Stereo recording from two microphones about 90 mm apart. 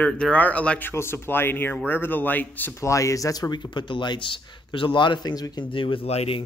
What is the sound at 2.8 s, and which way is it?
Speech, 35° left (ahead or behind).